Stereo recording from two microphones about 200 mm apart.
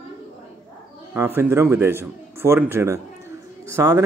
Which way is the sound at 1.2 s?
10° right (ahead or behind).